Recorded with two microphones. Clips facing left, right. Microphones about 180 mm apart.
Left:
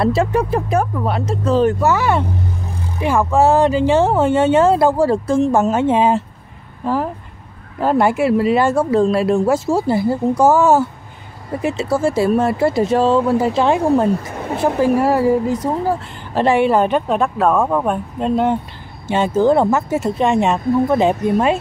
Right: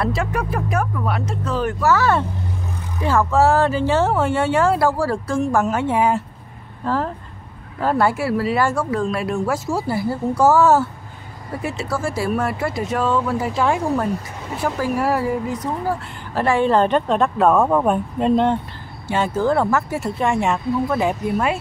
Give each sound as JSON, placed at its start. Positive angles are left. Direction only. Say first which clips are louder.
{"t": 0.0, "sound": "speech", "louder": "left 6 dB", "side_deg": 30}
{"t": 14.3, "sound": "a woman's voice", "louder": "left 7 dB", "side_deg": 55}
{"t": 14.8, "sound": "speech", "louder": "left 6 dB", "side_deg": 25}
{"t": 16.3, "sound": "speech", "louder": "left 3 dB", "side_deg": 20}
{"t": 19.0, "sound": "speech", "louder": "left 5 dB", "side_deg": 20}